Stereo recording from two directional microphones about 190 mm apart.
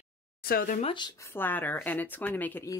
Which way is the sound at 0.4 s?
50° left (ahead or behind).